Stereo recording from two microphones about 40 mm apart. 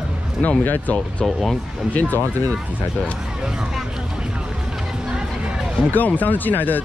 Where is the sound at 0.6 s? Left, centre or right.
Left.